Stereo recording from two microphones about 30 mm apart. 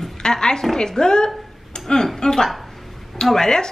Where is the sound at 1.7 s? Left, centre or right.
Left.